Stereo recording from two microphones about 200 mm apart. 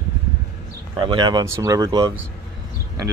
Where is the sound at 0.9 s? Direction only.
25° right (ahead or behind).